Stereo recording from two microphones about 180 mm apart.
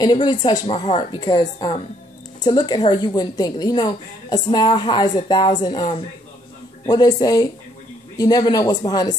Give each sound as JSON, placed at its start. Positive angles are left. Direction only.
{"t": 0.0, "sound": "a woman's voice", "side_deg": 25}